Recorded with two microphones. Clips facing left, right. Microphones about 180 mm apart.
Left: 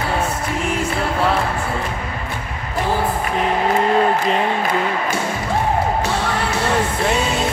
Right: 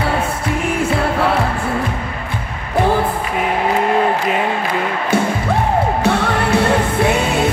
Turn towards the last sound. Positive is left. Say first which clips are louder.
# right 3 dB
turn(degrees=-60)  # may be behind; listen again after turning